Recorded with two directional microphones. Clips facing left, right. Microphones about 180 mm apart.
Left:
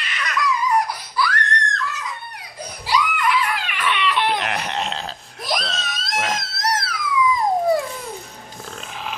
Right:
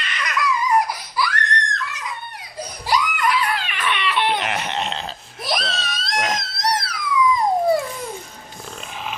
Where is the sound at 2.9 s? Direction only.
40° right (ahead or behind).